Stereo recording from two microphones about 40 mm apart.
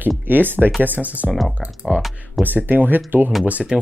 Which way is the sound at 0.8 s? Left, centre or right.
Right.